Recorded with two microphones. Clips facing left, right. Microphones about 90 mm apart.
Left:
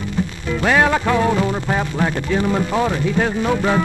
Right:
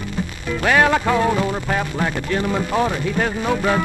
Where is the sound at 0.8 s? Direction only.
Centre (ahead or behind).